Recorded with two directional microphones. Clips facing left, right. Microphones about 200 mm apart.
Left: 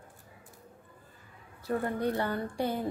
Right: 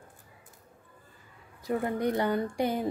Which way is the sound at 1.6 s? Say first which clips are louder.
Right 2 dB; 15° right (ahead or behind).